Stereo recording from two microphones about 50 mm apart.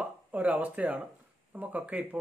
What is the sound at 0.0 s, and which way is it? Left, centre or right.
Speech, right.